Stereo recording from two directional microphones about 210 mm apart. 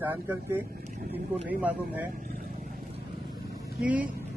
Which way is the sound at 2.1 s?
40° right (ahead or behind).